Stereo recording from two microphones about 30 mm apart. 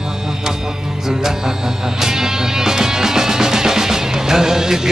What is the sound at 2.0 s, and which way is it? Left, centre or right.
Music, centre.